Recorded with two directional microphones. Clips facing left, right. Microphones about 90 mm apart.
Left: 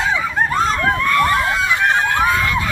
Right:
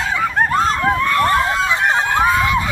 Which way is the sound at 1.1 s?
30° right (ahead or behind).